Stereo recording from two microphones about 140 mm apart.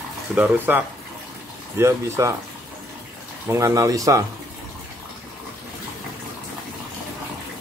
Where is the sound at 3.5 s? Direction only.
25° right (ahead or behind).